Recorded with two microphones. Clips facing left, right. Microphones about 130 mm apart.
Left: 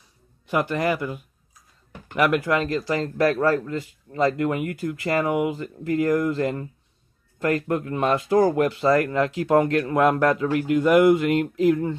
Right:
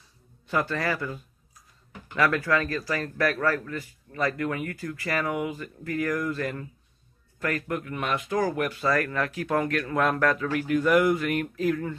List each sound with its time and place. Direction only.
0.5 s a man's voice: 15° left (ahead or behind)